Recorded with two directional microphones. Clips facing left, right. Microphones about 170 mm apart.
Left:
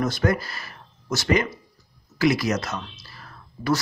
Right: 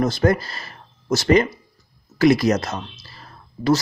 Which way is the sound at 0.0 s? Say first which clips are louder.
Right 4 dB; 30° right (ahead or behind).